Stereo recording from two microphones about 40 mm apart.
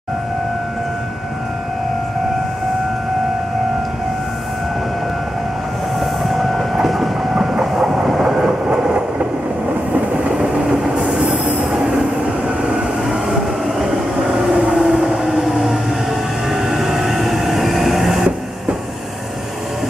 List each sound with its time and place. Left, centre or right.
5.9 s train: centre
8.2 s train: centre
14.3 s train: centre
14.7 s vehicle: centre
16.4 s train: centre